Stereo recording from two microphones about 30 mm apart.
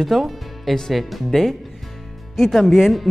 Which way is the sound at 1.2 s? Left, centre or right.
Centre.